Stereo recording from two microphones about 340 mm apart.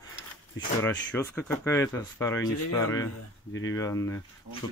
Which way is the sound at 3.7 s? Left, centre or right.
Centre.